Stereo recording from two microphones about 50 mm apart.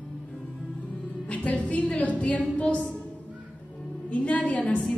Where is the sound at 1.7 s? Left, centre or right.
Left.